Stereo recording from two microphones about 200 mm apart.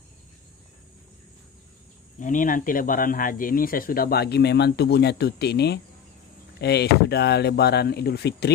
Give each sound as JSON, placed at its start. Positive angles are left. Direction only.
{"t": 2.1, "sound": "speech", "side_deg": 40}